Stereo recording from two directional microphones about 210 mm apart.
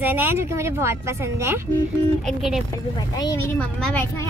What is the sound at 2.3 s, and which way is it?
Speech, centre (ahead or behind).